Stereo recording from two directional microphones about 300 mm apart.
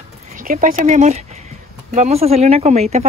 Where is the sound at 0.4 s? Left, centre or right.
Right.